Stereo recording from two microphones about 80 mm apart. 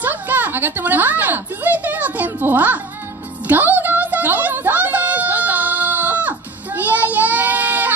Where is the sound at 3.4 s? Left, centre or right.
Right.